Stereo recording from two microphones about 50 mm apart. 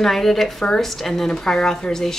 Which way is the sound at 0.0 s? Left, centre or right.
Centre.